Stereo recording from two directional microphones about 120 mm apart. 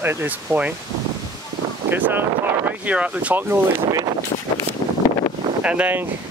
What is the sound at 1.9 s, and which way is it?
Speech, 15° right (ahead or behind).